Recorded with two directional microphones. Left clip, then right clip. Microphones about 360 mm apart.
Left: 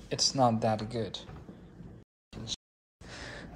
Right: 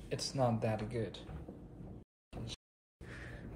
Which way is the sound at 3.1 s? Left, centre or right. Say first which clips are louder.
Left 7 dB; centre.